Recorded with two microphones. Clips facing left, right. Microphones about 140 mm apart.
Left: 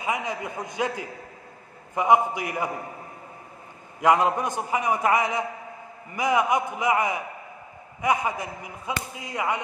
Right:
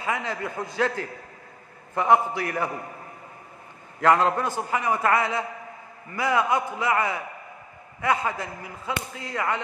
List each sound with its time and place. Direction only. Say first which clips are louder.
0.0 s a man's voice: even; 15° left (ahead or behind)
4.0 s a man's voice: even; 15° left (ahead or behind)